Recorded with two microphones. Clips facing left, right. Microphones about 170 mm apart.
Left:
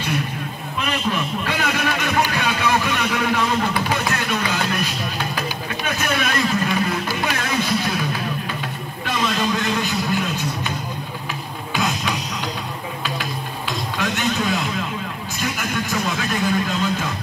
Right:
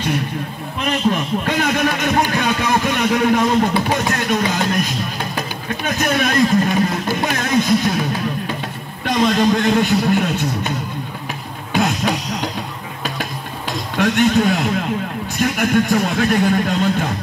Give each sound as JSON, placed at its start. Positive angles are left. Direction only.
{"t": 0.8, "sound": "a man's voice", "side_deg": -40}
{"t": 2.3, "sound": "a sound", "side_deg": -40}
{"t": 5.9, "sound": "speech", "side_deg": -40}
{"t": 7.1, "sound": "a sound", "side_deg": -40}
{"t": 9.0, "sound": "a man's voice", "side_deg": -45}
{"t": 11.7, "sound": "music", "side_deg": -40}
{"t": 13.9, "sound": "a man's voice", "side_deg": -60}